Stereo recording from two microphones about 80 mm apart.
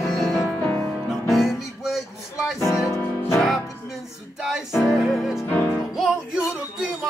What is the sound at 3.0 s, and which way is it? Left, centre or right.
Music, left.